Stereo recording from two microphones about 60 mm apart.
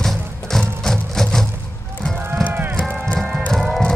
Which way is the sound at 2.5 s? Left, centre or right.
Right.